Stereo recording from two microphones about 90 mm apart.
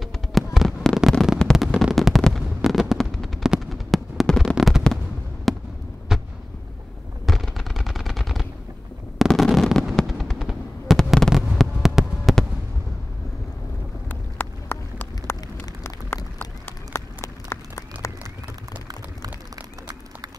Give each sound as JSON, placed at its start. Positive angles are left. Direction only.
{"t": 0.0, "sound": "fireworks", "side_deg": 0}
{"t": 1.4, "sound": "a sound", "side_deg": 5}
{"t": 2.0, "sound": "fireworks", "side_deg": 0}
{"t": 5.5, "sound": "basketball bounce", "side_deg": 0}
{"t": 6.1, "sound": "a sound", "side_deg": -5}
{"t": 7.2, "sound": "machine gun", "side_deg": 0}
{"t": 9.3, "sound": "fireworks", "side_deg": 0}
{"t": 11.1, "sound": "a sound", "side_deg": 0}
{"t": 12.3, "sound": "fireworks", "side_deg": 0}
{"t": 14.4, "sound": "run", "side_deg": 25}
{"t": 16.3, "sound": "run", "side_deg": 25}